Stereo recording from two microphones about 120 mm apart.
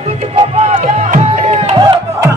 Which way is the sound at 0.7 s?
65° right (ahead or behind).